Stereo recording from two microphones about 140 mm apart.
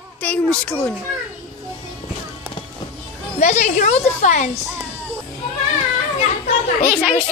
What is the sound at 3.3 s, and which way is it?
A woman's voice, 55° left (ahead or behind).